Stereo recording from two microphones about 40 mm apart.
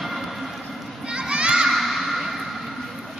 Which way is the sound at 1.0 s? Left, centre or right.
Right.